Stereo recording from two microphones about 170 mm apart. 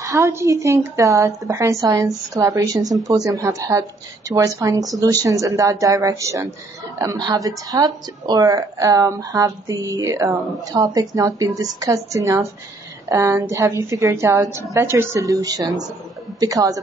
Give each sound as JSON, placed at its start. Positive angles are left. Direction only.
{"t": 0.0, "sound": "a woman's voice", "side_deg": -20}